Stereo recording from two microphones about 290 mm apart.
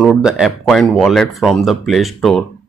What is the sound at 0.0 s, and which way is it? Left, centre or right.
A man's voice, centre.